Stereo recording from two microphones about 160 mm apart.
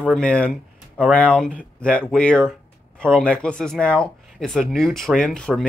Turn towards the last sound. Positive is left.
turn(degrees=5)  # may be behind; listen again after turning